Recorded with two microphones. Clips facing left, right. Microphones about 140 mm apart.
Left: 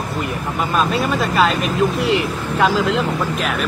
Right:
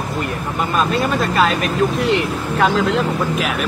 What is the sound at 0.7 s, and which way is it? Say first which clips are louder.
Speech: even; centre (ahead or behind).